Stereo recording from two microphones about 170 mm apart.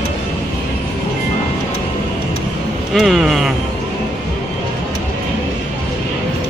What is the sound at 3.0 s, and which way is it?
Vehicle, centre (ahead or behind).